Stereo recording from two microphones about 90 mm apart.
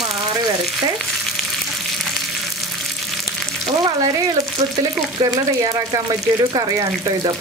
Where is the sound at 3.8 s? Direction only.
40° right (ahead or behind).